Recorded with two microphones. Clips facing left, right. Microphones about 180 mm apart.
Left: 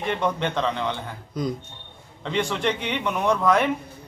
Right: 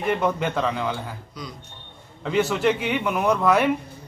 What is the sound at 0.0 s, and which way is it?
A man's voice, 5° right (ahead or behind).